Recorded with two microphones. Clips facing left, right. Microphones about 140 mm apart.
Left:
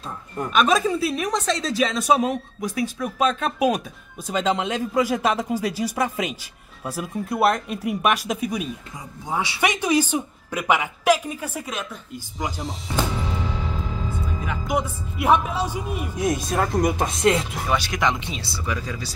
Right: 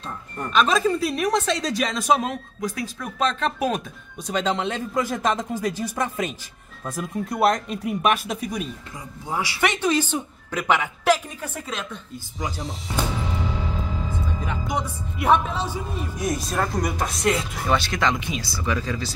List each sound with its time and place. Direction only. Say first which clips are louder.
0.4 s a woman's voice: left 1 dB; 5° left (ahead or behind)
14.7 s speech: left 3 dB; 5° left (ahead or behind); by 17.4 s 20° left (ahead or behind)
17.6 s speech: right 1 dB; 10° left (ahead or behind)
18.2 s speech: right 3 dB; 30° left (ahead or behind)
18.7 s speech: right 3 dB; 10° left (ahead or behind)